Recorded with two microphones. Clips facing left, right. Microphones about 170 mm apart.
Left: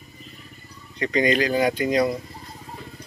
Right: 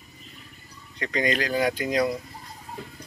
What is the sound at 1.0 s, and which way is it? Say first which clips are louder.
Speech: left 5 dB; centre (ahead or behind).